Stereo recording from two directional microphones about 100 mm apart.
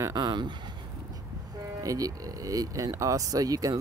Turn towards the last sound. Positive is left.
turn(degrees=-35)  # may be behind; listen again after turning